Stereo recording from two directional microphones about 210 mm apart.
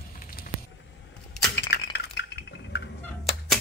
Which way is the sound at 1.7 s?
50° left (ahead or behind).